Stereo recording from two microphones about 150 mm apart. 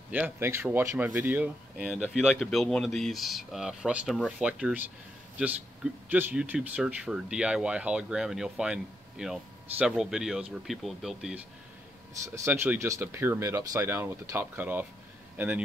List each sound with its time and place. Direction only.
0.1 s speech: 15° right (ahead or behind)
6.0 s speech: 10° right (ahead or behind)
12.4 s speech: 15° right (ahead or behind)